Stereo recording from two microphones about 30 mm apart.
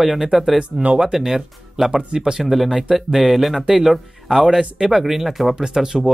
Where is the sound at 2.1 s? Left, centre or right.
Right.